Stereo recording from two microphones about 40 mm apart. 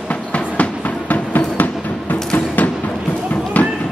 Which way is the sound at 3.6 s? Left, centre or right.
Left.